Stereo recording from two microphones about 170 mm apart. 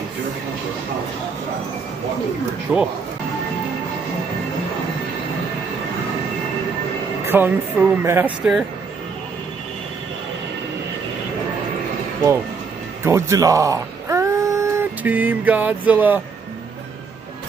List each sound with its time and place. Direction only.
7.2 s speech: 10° right (ahead or behind)
13.0 s speech: 15° right (ahead or behind)